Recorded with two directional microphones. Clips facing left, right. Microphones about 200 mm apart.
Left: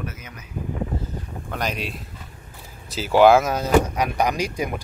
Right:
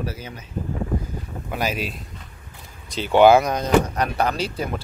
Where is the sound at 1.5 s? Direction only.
5° right (ahead or behind).